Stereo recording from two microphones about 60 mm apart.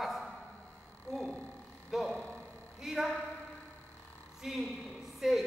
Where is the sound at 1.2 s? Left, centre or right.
Left.